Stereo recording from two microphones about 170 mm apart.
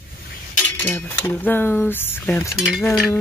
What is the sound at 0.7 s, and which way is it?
Speech, 10° left (ahead or behind).